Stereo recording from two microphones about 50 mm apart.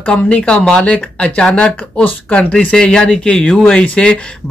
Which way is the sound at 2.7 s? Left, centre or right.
Centre.